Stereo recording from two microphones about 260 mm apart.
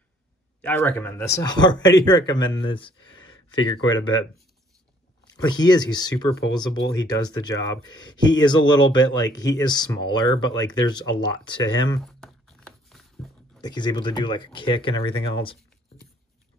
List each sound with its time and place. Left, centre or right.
0.6 s speech: centre
5.5 s speech: centre
12.1 s a sound: centre
13.6 s speech: centre